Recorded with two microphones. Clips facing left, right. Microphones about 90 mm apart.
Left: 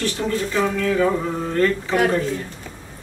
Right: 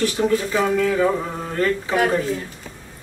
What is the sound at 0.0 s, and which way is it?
A woman's voice, 10° right (ahead or behind).